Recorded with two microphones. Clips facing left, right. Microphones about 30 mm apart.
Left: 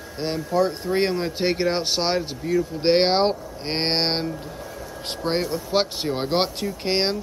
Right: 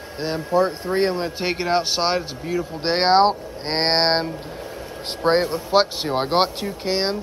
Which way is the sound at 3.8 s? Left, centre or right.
Right.